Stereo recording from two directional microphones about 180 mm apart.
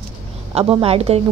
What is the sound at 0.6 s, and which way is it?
Speech, 35° right (ahead or behind).